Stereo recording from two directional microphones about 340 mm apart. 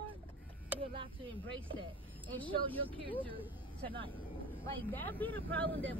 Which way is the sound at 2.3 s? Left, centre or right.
Centre.